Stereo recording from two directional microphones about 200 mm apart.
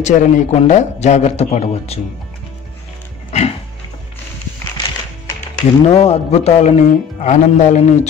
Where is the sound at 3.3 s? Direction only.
35° left (ahead or behind).